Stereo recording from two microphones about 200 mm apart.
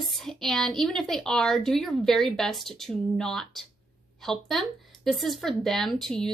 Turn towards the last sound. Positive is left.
turn(degrees=0)  # may be behind; listen again after turning